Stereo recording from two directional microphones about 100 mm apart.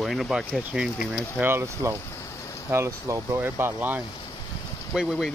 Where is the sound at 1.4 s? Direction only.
25° right (ahead or behind).